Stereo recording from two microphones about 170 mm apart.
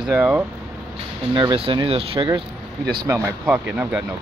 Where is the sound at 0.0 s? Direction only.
10° right (ahead or behind).